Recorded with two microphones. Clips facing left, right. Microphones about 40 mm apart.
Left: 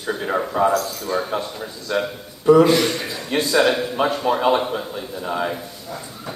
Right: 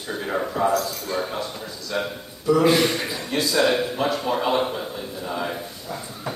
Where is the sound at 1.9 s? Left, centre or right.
Left.